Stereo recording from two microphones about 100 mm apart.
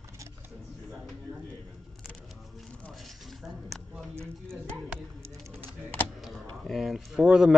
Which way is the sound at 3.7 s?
Centre (ahead or behind).